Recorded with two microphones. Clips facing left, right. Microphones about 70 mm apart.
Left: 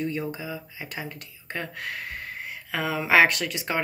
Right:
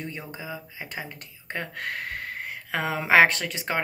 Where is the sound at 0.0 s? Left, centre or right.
Right.